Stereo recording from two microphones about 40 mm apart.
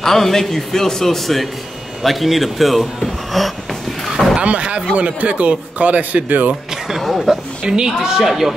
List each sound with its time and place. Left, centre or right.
0.0 s a man's voice: centre
4.4 s a man's voice: right
7.0 s speech: centre
7.6 s speech: centre